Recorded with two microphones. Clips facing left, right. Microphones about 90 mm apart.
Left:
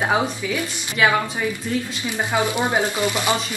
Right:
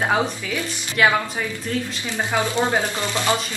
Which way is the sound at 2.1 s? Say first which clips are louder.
Left 1 dB; 15° left (ahead or behind).